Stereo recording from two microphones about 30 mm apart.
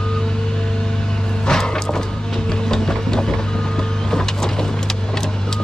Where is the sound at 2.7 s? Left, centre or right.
Centre.